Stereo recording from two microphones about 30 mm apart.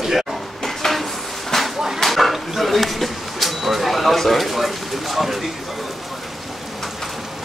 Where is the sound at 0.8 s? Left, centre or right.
Centre.